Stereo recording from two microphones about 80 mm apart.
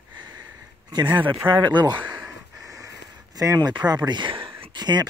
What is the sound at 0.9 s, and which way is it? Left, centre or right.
Speech, right.